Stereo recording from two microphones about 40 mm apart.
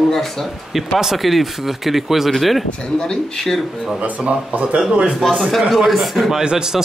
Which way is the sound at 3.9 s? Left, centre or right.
Right.